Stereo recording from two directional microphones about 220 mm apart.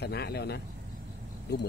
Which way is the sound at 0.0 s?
45° left (ahead or behind).